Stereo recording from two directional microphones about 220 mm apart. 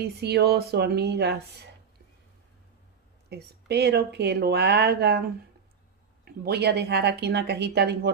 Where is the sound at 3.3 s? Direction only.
50° right (ahead or behind).